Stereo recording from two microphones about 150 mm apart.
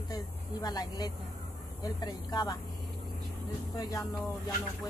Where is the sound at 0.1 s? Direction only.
25° left (ahead or behind).